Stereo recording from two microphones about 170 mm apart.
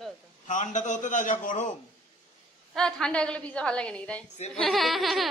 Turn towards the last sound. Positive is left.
turn(degrees=0)  # may be behind; listen again after turning